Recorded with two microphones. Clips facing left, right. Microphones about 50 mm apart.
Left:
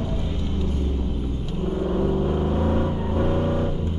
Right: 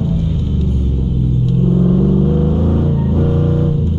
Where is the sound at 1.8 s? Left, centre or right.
Centre.